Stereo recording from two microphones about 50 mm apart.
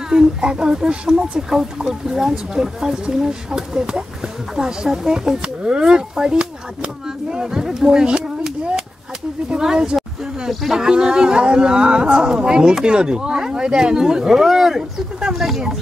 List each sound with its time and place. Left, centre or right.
0.1 s speech: centre